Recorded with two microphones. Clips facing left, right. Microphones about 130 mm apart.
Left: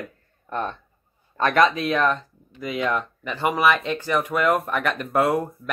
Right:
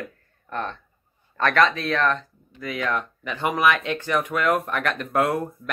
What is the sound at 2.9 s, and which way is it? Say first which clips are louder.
Speech: left 1 dB; centre (ahead or behind).